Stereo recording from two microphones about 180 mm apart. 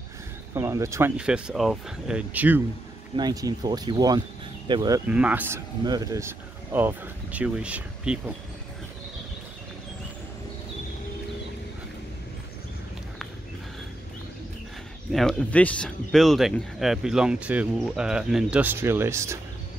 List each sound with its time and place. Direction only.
0.6 s speech: 15° right (ahead or behind)
3.2 s speech: 20° right (ahead or behind)
5.0 s speech: 5° right (ahead or behind)
15.1 s speech: 5° left (ahead or behind); by 19.3 s 15° right (ahead or behind)